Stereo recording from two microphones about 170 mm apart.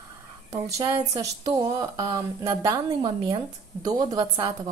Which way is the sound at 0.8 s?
20° right (ahead or behind).